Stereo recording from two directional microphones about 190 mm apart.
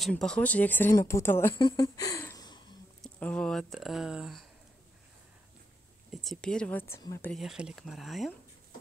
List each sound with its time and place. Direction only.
0.0 s speech: 5° left (ahead or behind)
1.5 s speech: 25° left (ahead or behind)
3.0 s speech: 5° left (ahead or behind)
6.1 s speech: centre (ahead or behind); by 7.2 s 20° left (ahead or behind)
7.2 s speech: centre (ahead or behind)